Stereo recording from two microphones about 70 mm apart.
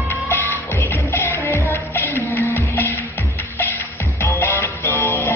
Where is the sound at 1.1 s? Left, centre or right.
Left.